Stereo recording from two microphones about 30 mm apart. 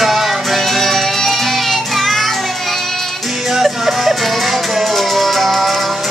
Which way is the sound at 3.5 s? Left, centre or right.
Centre.